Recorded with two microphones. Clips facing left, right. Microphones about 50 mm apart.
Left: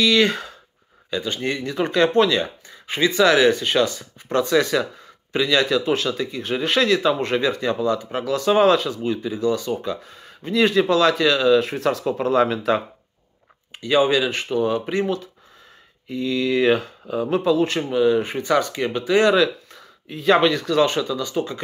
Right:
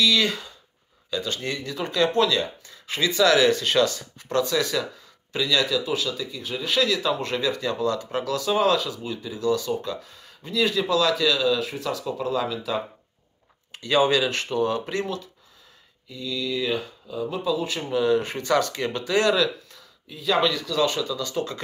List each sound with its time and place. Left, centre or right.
0.0 s speech: left
1.1 s speech: left
8.4 s speech: left
13.7 s speech: centre
16.1 s speech: left
17.8 s speech: centre